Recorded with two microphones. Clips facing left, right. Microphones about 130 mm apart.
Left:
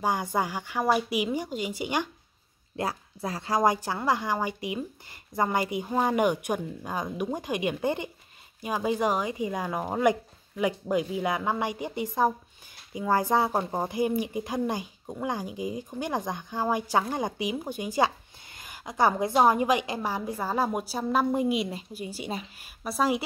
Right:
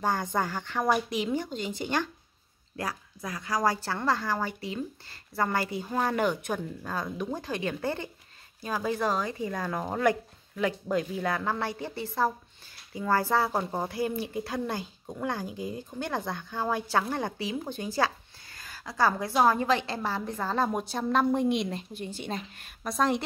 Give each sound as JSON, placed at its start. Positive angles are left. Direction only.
{"t": 0.0, "sound": "speech", "side_deg": 10}
{"t": 2.7, "sound": "speech", "side_deg": 25}